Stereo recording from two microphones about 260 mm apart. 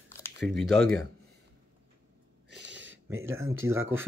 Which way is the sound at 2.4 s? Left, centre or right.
Right.